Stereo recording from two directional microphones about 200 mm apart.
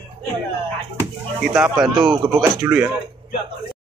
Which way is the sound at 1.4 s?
Centre (ahead or behind).